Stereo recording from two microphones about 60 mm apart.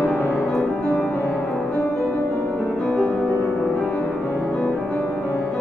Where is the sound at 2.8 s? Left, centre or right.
Centre.